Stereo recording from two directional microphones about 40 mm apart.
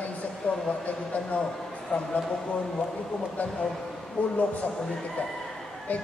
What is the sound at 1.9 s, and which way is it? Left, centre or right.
Speech, left.